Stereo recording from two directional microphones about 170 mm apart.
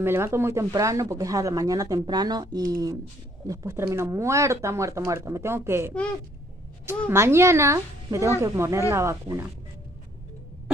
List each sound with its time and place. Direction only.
0.0 s speech: 15° right (ahead or behind)